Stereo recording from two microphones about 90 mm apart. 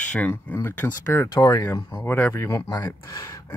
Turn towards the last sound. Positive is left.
turn(degrees=40)  # may be behind; listen again after turning